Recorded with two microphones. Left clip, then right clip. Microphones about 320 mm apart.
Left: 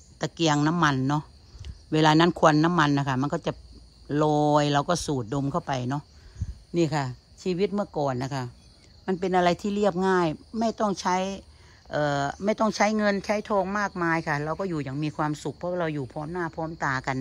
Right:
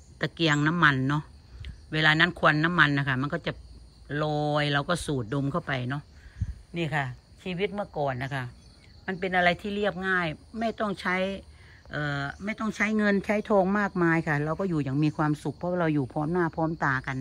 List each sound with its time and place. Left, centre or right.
0.2 s speech: centre
4.6 s speech: centre